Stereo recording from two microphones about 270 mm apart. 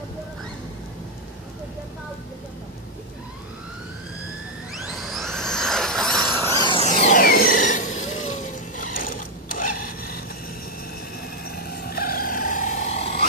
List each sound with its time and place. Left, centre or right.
4.7 s squeal: centre
6.7 s a sound: left
11.4 s vehicle: left